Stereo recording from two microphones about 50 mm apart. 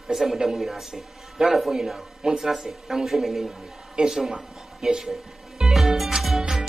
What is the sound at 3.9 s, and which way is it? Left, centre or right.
Speech, centre.